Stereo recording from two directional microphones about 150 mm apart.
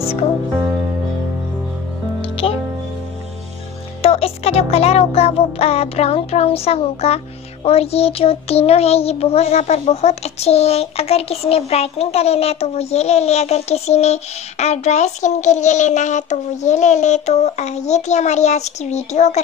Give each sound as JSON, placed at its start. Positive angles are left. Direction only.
{"t": 4.0, "sound": "speech", "side_deg": 40}
{"t": 7.6, "sound": "child singing", "side_deg": 40}